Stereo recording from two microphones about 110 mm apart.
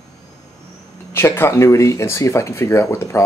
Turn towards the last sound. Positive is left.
turn(degrees=25)  # may be behind; listen again after turning